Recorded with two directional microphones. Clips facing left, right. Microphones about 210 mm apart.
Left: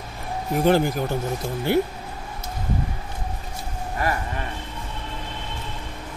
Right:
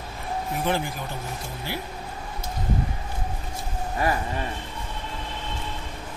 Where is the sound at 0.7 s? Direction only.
40° left (ahead or behind).